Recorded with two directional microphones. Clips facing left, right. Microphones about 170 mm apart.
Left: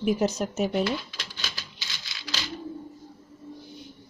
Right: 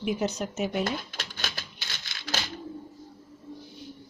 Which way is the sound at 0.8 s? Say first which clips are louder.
Left 3 dB; 50° right (ahead or behind).